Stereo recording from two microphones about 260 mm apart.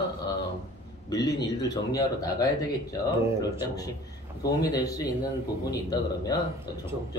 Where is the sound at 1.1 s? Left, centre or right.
Centre.